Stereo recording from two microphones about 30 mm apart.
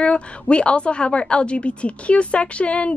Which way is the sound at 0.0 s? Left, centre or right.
Left.